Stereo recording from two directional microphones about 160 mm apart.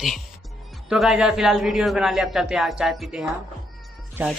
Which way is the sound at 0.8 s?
5° right (ahead or behind).